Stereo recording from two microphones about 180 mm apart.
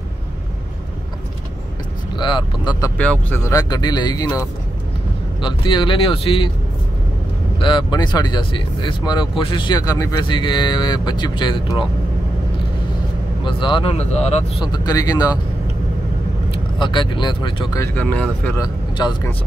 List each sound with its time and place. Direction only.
2.1 s speech: 25° left (ahead or behind)
3.0 s speech: 10° left (ahead or behind); by 6.5 s 30° left (ahead or behind)
7.6 s speech: 25° left (ahead or behind)
13.4 s speech: 25° left (ahead or behind)
14.6 s speech: 20° left (ahead or behind)
16.8 s speech: 25° left (ahead or behind)
17.8 s speech: 10° left (ahead or behind)
18.6 s speech: 25° left (ahead or behind)